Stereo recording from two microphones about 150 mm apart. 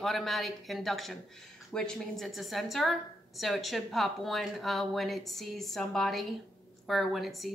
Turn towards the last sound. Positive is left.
turn(degrees=0)  # may be behind; listen again after turning